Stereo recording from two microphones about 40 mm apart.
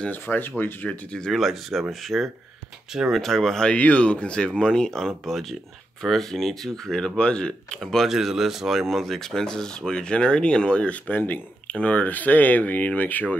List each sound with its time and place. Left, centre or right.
0.1 s speech: left
1.3 s speech: centre
3.7 s speech: left
5.0 s speech: centre
7.2 s speech: left
7.8 s speech: centre
8.1 s speech: centre
8.8 s speech: centre; by 11.0 s left
11.1 s speech: left
11.6 s speech: left